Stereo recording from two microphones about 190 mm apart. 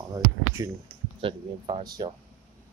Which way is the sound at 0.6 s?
15° right (ahead or behind).